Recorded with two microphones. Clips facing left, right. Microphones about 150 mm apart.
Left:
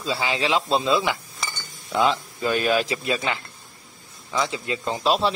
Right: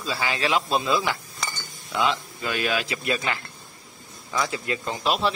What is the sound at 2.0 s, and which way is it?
Speech, 40° left (ahead or behind).